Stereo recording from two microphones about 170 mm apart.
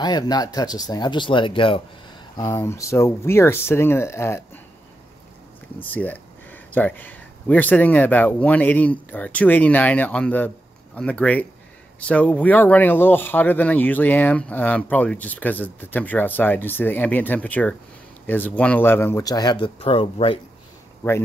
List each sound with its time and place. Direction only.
0.0 s speech: 25° left (ahead or behind)
2.3 s speech: 15° left (ahead or behind)
5.8 s speech: 10° left (ahead or behind); by 20.3 s 35° left (ahead or behind)